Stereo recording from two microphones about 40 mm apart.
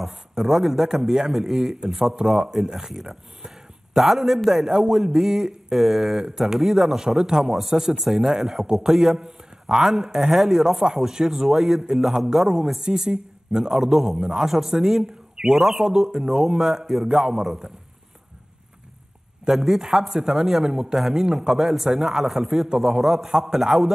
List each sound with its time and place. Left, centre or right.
0.1 s a woman's voice: centre
13.7 s a man's voice: centre
14.1 s speech: centre
19.5 s speech: centre
21.5 s a man's voice: centre
22.8 s speech: centre